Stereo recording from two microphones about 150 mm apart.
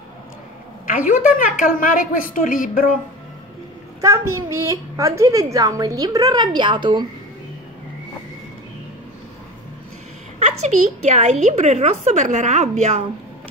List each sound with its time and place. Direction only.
0.8 s a woman's voice: 60° left (ahead or behind)
4.0 s a child's voice: 20° right (ahead or behind)
10.4 s a woman's voice: 50° right (ahead or behind)